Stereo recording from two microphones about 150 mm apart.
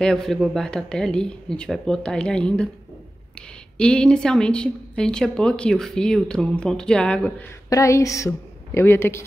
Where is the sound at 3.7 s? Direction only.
5° left (ahead or behind).